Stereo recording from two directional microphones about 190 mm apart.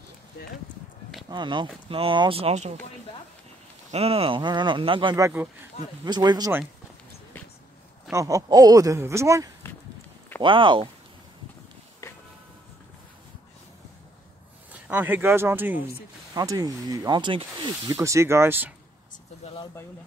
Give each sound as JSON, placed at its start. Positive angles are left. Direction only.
{"t": 0.3, "sound": "speech", "side_deg": 60}
{"t": 1.3, "sound": "speech", "side_deg": -25}
{"t": 3.9, "sound": "speech", "side_deg": -30}
{"t": 8.1, "sound": "speech", "side_deg": -15}
{"t": 10.4, "sound": "speech", "side_deg": -25}
{"t": 12.0, "sound": "music", "side_deg": 15}
{"t": 14.7, "sound": "speech", "side_deg": -10}
{"t": 19.4, "sound": "speech", "side_deg": 25}